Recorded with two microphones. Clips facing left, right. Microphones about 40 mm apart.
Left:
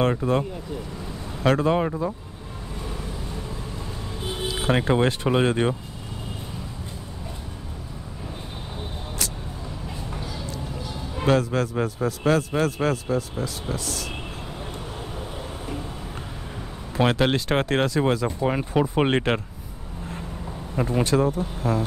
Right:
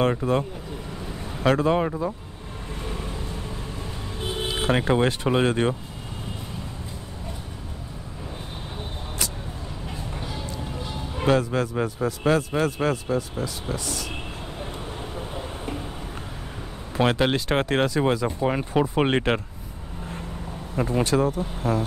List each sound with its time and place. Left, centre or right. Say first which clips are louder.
0.0 s a man's voice: even; centre
4.6 s a man's voice: left 1 dB; centre
10.2 s a sound: even; right
11.2 s a man's voice: even; centre
15.1 s vehicle: right 1 dB; centre
16.9 s a man's voice: even; centre
20.7 s a man's voice: even; centre